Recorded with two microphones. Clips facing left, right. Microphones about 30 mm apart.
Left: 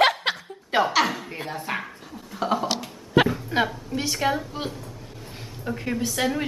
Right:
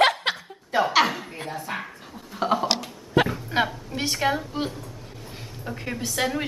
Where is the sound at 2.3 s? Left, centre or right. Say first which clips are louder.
Right 1 dB; centre.